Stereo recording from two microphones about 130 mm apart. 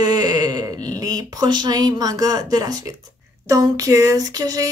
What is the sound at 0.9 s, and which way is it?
Speech, 30° right (ahead or behind).